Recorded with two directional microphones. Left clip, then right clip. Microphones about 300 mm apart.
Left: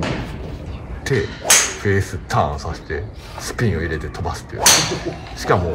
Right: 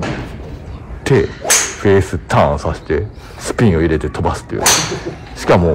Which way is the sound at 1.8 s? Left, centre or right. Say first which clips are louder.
Right 8 dB; centre.